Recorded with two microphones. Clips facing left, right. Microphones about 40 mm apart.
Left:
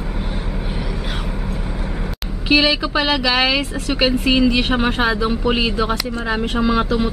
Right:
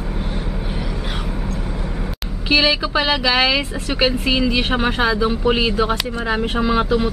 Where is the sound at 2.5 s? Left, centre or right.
Centre.